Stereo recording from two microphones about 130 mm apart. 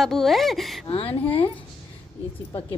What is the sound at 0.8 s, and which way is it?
Speech, 40° left (ahead or behind).